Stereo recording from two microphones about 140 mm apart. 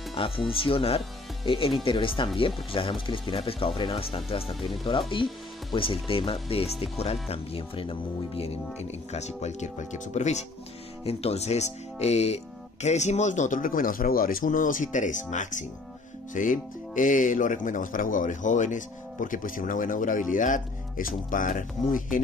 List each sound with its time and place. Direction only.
0.1 s speech: 40° left (ahead or behind); by 22.2 s 70° left (ahead or behind)